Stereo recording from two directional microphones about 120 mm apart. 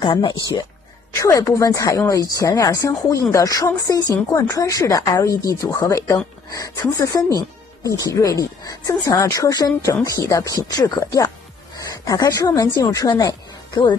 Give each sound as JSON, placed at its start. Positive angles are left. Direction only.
{"t": 0.0, "sound": "speech", "side_deg": 40}
{"t": 1.1, "sound": "speech", "side_deg": 25}